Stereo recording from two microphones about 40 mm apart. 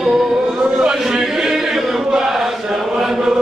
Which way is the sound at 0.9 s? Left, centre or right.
Centre.